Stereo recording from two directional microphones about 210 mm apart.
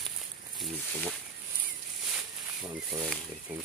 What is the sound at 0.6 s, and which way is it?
Speech, 5° right (ahead or behind).